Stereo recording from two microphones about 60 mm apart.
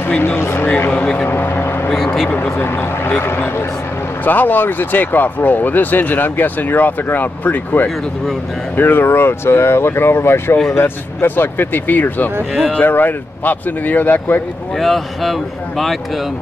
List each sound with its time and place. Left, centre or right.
0.2 s speech: left
0.9 s speech: centre
1.3 s vehicle: left
2.5 s speech: left
14.8 s speech: centre